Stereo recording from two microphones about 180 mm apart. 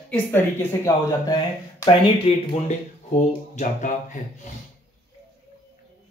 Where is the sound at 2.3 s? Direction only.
35° left (ahead or behind).